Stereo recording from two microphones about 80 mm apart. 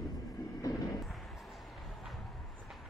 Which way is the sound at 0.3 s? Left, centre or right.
Left.